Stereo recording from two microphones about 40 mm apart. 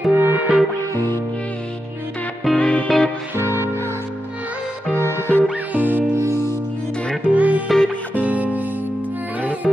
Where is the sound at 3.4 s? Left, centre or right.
Right.